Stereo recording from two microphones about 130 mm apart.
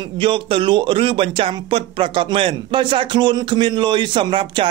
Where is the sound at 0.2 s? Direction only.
40° right (ahead or behind).